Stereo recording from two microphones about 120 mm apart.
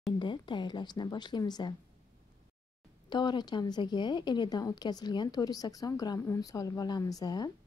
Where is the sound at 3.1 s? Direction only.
35° left (ahead or behind).